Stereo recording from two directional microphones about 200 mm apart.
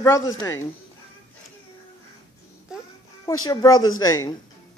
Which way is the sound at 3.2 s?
20° left (ahead or behind).